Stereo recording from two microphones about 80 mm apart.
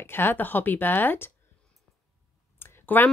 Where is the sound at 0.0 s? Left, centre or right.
Left.